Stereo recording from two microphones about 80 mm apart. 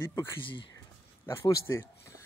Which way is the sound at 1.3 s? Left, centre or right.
Left.